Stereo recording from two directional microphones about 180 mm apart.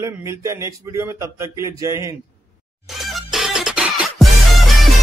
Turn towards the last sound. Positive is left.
turn(degrees=0)  # may be behind; listen again after turning